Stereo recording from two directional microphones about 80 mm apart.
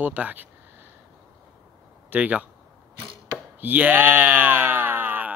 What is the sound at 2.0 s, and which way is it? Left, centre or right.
Speech, centre.